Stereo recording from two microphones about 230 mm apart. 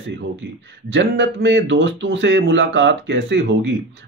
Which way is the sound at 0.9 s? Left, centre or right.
Right.